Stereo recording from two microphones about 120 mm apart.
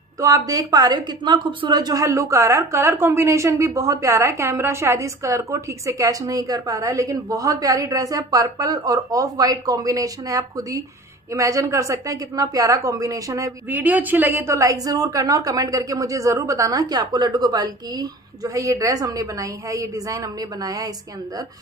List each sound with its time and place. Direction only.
0.2 s a woman's voice: 30° right (ahead or behind)
13.7 s a woman's voice: 15° right (ahead or behind); by 20.9 s 30° right (ahead or behind)